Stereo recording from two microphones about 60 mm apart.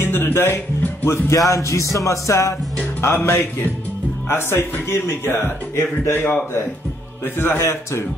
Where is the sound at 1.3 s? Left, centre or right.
Left.